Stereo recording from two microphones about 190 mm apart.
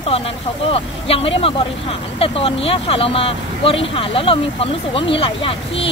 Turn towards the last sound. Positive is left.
turn(degrees=30)  # may be behind; listen again after turning